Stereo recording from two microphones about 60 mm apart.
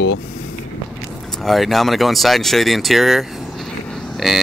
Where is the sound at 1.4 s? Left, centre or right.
Centre.